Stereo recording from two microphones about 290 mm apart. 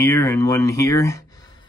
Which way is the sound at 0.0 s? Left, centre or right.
Centre.